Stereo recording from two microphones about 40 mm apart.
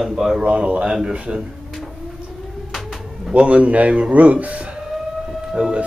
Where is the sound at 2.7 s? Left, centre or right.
Centre.